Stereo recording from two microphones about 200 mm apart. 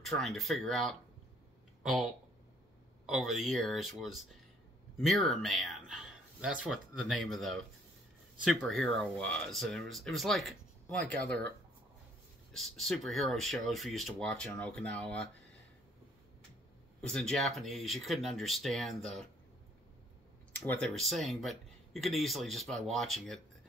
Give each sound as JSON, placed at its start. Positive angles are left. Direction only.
{"t": 0.0, "sound": "speech", "side_deg": 0}
{"t": 3.1, "sound": "speech", "side_deg": 0}
{"t": 12.5, "sound": "speech", "side_deg": 0}
{"t": 17.0, "sound": "speech", "side_deg": 5}
{"t": 20.6, "sound": "speech", "side_deg": 5}